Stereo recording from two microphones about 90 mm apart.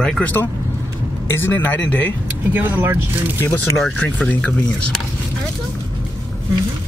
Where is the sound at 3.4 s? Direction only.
20° left (ahead or behind).